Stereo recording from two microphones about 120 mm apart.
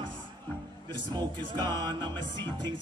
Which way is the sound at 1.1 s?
35° right (ahead or behind).